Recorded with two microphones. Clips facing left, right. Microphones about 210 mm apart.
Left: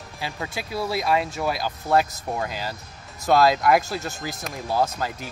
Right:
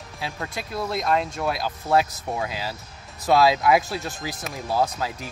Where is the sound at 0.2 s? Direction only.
Centre (ahead or behind).